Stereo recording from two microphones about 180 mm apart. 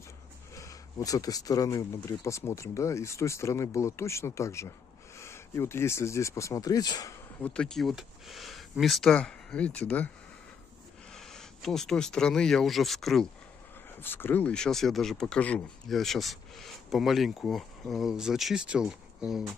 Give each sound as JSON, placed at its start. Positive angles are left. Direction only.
{"t": 0.6, "sound": "speech", "side_deg": 20}
{"t": 7.4, "sound": "speech", "side_deg": 5}
{"t": 11.1, "sound": "speech", "side_deg": 0}
{"t": 14.0, "sound": "speech", "side_deg": 10}